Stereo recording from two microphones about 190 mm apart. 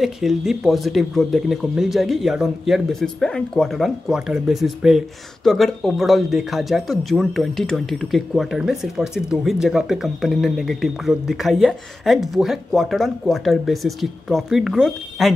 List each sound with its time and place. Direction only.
0.0 s speech: centre (ahead or behind)